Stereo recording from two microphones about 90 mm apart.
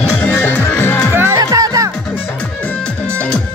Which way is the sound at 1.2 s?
35° right (ahead or behind).